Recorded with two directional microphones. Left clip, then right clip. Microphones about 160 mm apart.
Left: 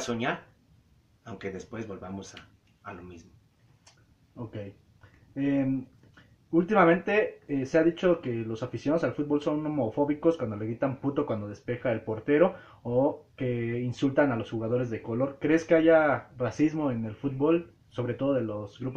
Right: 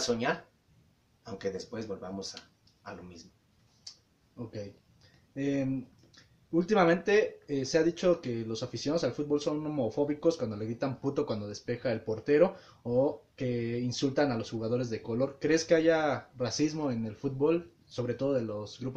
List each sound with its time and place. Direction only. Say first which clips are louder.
0.0 s speech: right 1 dB; 25° right (ahead or behind)
4.4 s speech: left 1 dB; centre (ahead or behind)
6.6 s speech: left 3 dB; 10° right (ahead or behind)